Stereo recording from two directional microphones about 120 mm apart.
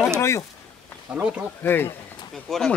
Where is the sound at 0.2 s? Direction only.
25° left (ahead or behind).